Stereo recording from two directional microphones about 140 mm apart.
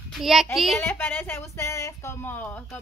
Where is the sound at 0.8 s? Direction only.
15° left (ahead or behind).